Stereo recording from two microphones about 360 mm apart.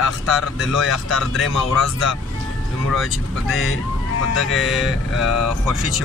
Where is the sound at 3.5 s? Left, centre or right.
Left.